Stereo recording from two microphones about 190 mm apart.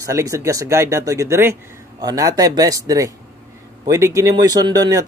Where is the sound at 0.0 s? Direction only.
15° right (ahead or behind).